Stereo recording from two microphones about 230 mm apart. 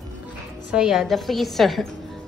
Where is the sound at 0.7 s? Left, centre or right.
Centre.